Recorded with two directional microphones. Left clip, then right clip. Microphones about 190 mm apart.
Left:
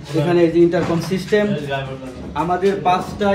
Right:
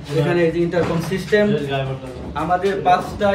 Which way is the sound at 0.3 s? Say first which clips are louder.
Left 5 dB; 15° left (ahead or behind).